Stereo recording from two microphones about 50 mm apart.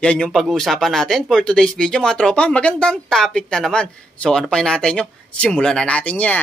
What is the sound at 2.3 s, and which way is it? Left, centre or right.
Speech, left.